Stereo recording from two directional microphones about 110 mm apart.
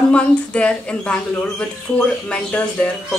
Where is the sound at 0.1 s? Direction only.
10° left (ahead or behind).